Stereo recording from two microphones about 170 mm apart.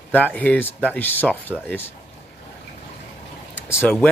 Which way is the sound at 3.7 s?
15° left (ahead or behind).